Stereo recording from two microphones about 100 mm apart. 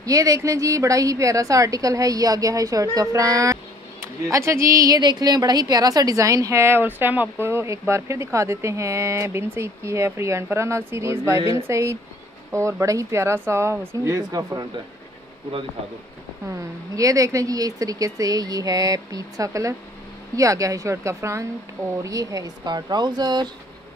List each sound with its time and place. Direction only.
0.0 s a woman's voice: 35° right (ahead or behind)
16.4 s a woman's voice: 30° right (ahead or behind)